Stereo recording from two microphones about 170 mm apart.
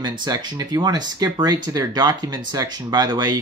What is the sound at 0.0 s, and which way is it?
Speech, 25° right (ahead or behind).